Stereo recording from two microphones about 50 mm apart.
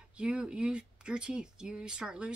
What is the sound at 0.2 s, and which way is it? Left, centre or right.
Speech, centre.